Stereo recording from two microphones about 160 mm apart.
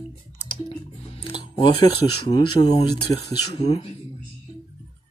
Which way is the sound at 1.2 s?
30° left (ahead or behind).